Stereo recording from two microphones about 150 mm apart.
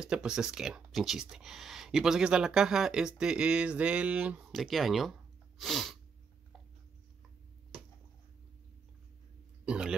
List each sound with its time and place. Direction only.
0.0 s speech: 5° right (ahead or behind)
9.7 s speech: 5° right (ahead or behind)